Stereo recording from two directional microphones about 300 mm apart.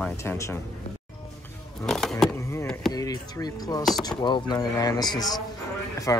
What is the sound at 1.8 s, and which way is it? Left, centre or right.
Speech, centre.